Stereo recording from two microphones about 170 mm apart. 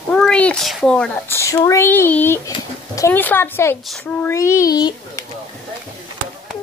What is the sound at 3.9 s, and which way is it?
Speech, 10° left (ahead or behind).